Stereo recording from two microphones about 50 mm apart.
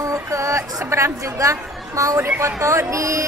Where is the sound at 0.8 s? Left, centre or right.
Right.